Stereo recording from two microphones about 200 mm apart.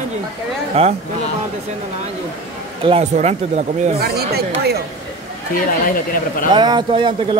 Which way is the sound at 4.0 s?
50° right (ahead or behind).